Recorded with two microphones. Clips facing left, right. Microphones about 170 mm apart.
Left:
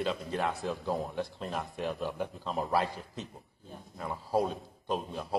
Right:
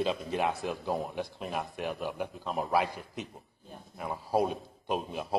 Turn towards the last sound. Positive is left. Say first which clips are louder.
# right 1 dB
turn(degrees=-15)  # may be behind; listen again after turning